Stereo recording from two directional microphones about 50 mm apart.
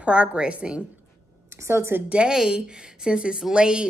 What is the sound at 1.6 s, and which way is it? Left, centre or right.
Speech, right.